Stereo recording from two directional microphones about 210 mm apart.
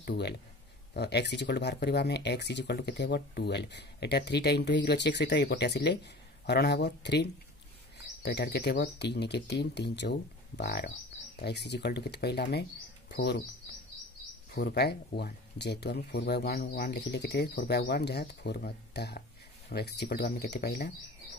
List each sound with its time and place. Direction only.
0.0 s speech: 55° left (ahead or behind)
14.5 s speech: 50° left (ahead or behind)